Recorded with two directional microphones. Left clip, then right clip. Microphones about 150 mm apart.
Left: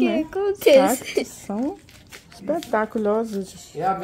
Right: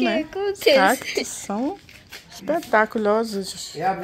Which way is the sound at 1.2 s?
5° left (ahead or behind).